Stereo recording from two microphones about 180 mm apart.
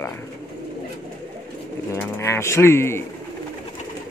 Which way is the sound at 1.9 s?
15° left (ahead or behind).